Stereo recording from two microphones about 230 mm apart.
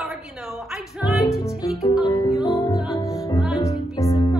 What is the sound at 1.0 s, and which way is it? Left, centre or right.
Music, centre.